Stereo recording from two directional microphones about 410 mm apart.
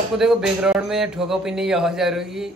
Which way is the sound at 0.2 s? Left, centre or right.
Centre.